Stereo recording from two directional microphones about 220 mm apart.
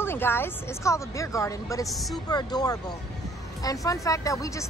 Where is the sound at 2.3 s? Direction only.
20° left (ahead or behind).